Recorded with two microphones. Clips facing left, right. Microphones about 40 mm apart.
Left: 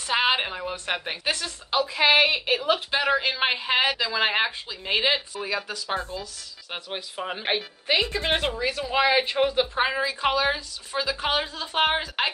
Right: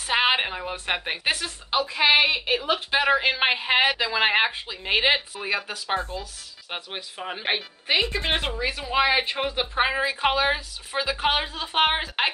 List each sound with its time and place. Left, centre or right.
0.0 s a woman's voice: centre
3.0 s speech: right
7.3 s speech: centre